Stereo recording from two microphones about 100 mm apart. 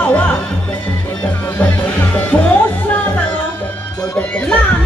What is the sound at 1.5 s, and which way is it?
Music, 15° left (ahead or behind).